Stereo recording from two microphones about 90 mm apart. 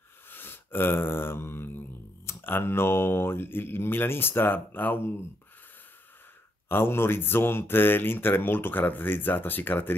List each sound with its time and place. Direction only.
0.3 s a sound: 25° left (ahead or behind)
2.2 s speech: 25° left (ahead or behind)
6.7 s speech: 25° left (ahead or behind)